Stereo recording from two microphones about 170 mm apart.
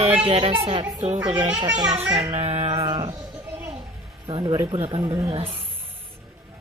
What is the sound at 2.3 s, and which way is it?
Speech, 35° right (ahead or behind).